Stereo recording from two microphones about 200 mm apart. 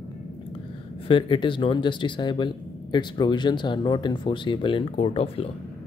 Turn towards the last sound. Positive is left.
turn(degrees=30)  # may be behind; listen again after turning